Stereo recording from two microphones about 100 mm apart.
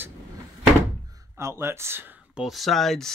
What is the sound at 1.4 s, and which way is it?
Speech, 25° right (ahead or behind).